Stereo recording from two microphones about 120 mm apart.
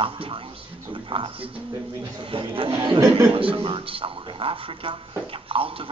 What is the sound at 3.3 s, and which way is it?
Speech, 50° right (ahead or behind).